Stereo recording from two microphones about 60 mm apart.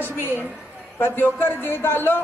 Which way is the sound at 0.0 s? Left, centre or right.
Left.